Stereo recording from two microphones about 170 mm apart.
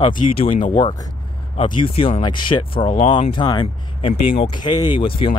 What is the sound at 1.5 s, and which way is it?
Speech, 30° left (ahead or behind).